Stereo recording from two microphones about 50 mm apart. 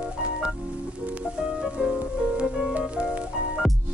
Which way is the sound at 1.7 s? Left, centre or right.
Centre.